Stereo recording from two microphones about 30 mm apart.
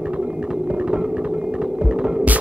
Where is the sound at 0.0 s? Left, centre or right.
Right.